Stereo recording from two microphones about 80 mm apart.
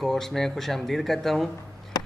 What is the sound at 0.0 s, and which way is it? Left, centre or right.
A man's voice, centre.